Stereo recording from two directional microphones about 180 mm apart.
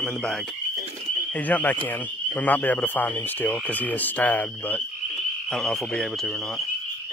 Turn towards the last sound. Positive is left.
turn(degrees=0)  # may be behind; listen again after turning